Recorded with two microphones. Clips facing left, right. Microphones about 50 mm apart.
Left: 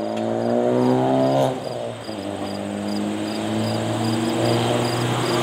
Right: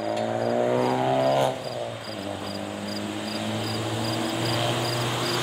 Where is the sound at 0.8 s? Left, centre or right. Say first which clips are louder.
Left 5 dB; centre.